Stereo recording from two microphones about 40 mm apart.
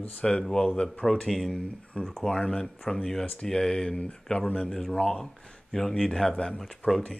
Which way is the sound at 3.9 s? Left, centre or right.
Left.